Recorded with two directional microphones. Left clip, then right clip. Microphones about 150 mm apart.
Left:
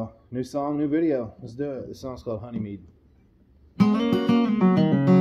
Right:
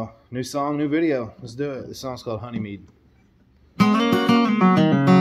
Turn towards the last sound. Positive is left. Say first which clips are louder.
# right 4 dB
turn(degrees=-5)  # may be behind; listen again after turning